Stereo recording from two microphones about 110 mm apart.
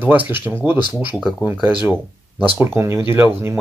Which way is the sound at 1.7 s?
10° right (ahead or behind).